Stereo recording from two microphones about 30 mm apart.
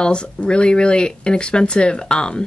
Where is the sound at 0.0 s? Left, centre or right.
Left.